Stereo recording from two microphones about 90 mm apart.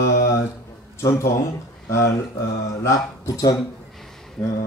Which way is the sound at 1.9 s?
35° left (ahead or behind).